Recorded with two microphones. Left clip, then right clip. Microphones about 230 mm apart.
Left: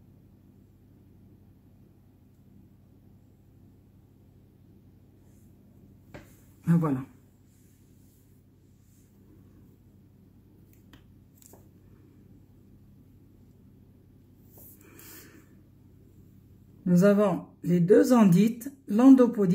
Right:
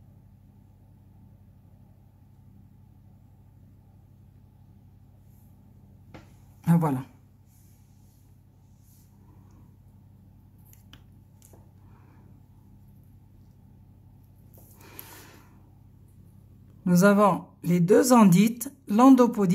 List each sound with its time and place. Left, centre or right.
6.6 s speech: right
16.8 s speech: centre